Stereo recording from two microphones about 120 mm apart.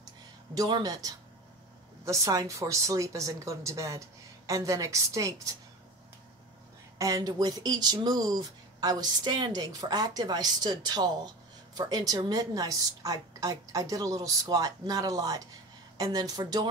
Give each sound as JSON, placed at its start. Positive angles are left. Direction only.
{"t": 0.6, "sound": "a woman's voice", "side_deg": -35}
{"t": 7.0, "sound": "speech", "side_deg": -30}